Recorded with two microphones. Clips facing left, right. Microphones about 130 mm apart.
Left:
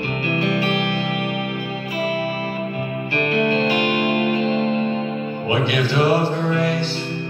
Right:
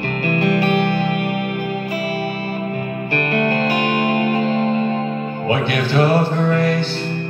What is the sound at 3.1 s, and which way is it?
Music, 50° right (ahead or behind).